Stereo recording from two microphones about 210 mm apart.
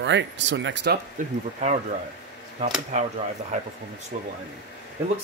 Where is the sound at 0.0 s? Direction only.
60° right (ahead or behind).